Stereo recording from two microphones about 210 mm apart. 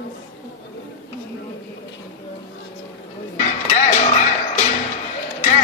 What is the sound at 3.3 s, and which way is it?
Speech, 35° left (ahead or behind).